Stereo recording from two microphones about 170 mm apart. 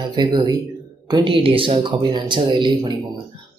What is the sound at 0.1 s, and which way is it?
Speech, 25° right (ahead or behind).